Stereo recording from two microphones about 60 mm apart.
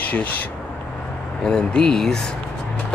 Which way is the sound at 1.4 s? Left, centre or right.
Centre.